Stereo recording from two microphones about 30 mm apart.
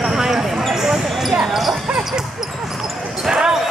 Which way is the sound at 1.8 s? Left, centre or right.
Centre.